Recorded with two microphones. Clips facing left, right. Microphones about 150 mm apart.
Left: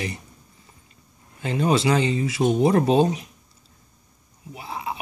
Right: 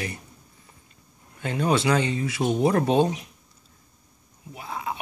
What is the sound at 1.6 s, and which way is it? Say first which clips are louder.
Speech: left 2 dB; 5° left (ahead or behind).